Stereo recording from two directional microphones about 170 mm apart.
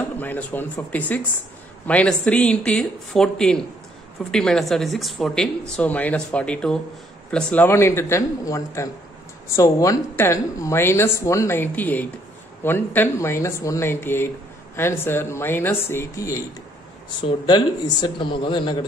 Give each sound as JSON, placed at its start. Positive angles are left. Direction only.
{"t": 0.2, "sound": "speech", "side_deg": 10}
{"t": 17.5, "sound": "a man's voice", "side_deg": 25}